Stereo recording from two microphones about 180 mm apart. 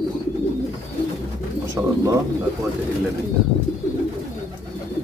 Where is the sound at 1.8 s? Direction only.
15° right (ahead or behind).